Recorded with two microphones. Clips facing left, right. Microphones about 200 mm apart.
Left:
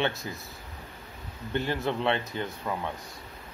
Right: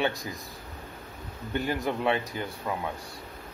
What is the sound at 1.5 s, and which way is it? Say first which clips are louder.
Speech: even; 15° right (ahead or behind).